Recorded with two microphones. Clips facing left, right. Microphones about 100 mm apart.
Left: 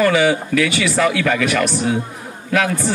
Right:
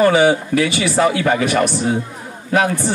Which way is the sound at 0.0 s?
30° right (ahead or behind).